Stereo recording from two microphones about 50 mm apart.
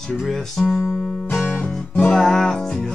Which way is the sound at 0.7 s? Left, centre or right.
Centre.